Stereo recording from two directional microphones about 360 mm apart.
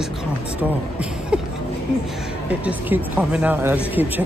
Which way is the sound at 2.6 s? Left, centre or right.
Centre.